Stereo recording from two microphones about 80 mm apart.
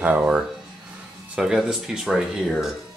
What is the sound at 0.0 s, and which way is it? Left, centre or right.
Speech, right.